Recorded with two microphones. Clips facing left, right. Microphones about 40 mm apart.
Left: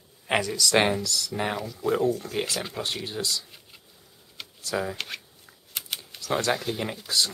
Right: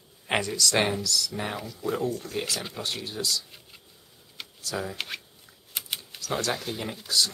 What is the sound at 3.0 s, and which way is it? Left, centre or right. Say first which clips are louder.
Speech: left 1 dB; left.